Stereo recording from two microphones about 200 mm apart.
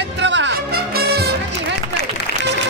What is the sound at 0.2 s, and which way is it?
Music, 65° right (ahead or behind).